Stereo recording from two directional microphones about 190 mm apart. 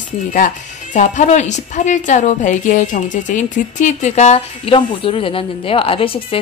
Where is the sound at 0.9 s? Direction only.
40° left (ahead or behind).